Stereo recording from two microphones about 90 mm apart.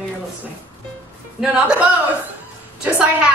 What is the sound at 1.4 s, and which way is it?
A woman's voice, 10° right (ahead or behind).